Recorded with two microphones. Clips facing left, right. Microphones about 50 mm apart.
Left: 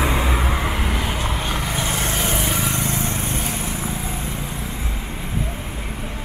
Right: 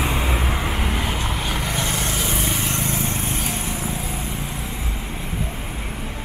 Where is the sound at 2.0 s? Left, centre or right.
Left.